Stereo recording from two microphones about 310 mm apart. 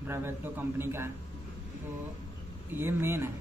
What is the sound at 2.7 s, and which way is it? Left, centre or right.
Speech, centre.